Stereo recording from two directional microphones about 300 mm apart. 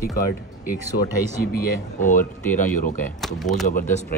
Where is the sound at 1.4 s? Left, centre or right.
Left.